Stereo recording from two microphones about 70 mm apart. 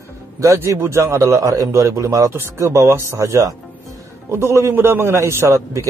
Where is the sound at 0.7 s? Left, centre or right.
Right.